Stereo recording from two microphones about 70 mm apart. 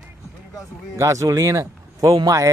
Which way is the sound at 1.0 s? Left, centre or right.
Right.